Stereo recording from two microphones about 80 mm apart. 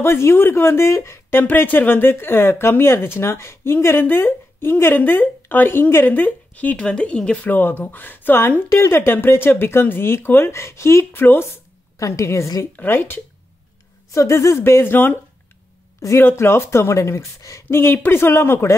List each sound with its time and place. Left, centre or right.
0.0 s speech: left; by 7.5 s centre
7.8 s speech: left
12.7 s speech: left
16.2 s speech: left